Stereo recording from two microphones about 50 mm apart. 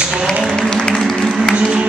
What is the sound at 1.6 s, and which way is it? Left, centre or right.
Music, centre.